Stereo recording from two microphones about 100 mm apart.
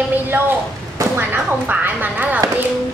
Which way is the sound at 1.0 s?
30° right (ahead or behind).